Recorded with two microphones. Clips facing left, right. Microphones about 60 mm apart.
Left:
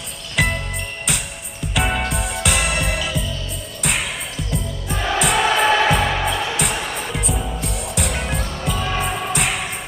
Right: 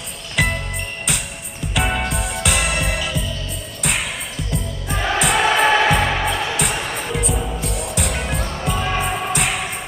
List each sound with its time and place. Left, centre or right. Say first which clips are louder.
0.4 s music: even; centre
9.0 s music: right 1 dB; centre